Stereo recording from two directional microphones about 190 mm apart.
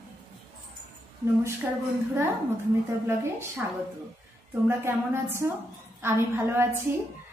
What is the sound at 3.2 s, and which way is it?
Speech, 15° right (ahead or behind).